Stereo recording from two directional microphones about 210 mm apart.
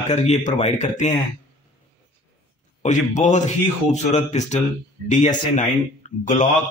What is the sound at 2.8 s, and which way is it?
A man's voice, 35° left (ahead or behind).